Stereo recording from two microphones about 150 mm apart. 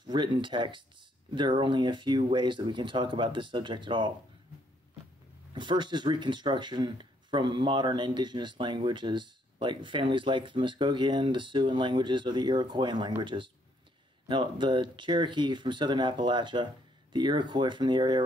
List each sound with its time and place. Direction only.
0.0 s speech: 30° right (ahead or behind)
5.5 s speech: 30° right (ahead or behind)